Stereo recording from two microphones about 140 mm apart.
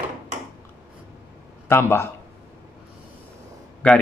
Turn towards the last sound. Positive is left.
turn(degrees=10)  # may be behind; listen again after turning